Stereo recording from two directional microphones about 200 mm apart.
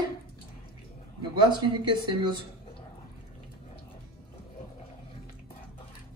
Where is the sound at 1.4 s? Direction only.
25° right (ahead or behind).